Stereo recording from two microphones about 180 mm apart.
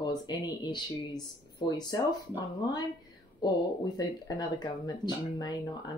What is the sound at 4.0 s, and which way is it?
Speech, 25° left (ahead or behind).